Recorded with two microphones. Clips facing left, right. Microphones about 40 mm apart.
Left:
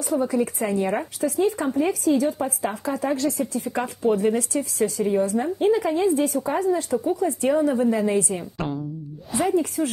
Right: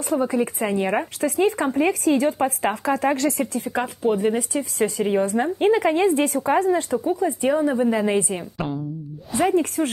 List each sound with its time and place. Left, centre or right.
0.1 s speech: right
1.2 s speech: right
4.0 s a woman's voice: right
4.6 s speech: right
7.2 s a woman's voice: centre; by 8.2 s right
8.5 s speech: centre
9.5 s speech: right